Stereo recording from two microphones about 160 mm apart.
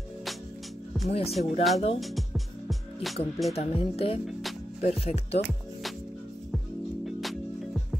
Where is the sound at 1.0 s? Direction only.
40° left (ahead or behind).